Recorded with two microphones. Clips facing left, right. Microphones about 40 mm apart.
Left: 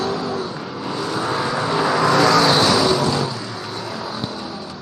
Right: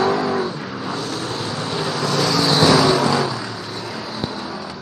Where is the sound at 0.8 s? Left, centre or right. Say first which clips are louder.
Left 4 dB; centre.